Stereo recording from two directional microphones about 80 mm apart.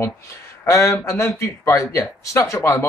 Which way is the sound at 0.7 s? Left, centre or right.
Left.